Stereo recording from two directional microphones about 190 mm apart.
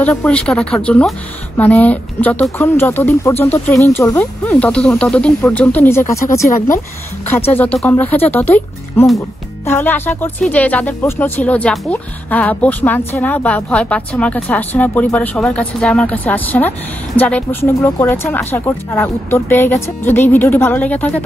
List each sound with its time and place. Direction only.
0.0 s speech: 5° left (ahead or behind)